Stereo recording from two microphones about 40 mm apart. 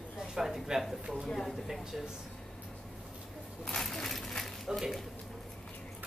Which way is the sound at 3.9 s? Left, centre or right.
Centre.